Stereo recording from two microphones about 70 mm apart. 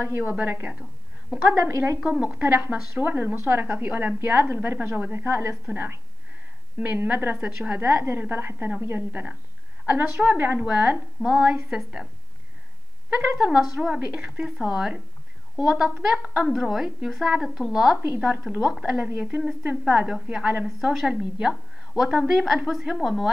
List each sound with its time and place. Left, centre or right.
0.2 s a woman's voice: right
1.5 s a woman's voice: right
2.0 s a woman's voice: centre
10.6 s speech: centre
13.4 s a woman's voice: centre
20.6 s a woman's voice: centre